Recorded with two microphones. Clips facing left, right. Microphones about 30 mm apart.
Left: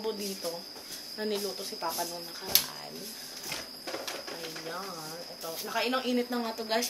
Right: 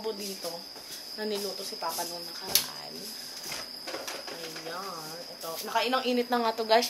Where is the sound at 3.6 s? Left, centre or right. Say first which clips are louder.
Even; centre.